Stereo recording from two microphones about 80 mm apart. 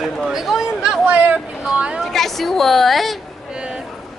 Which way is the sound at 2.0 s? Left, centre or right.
Centre.